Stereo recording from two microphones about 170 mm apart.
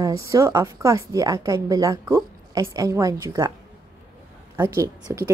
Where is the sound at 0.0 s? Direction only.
20° right (ahead or behind).